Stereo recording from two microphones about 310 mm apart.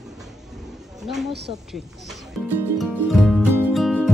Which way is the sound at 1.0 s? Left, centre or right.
Centre.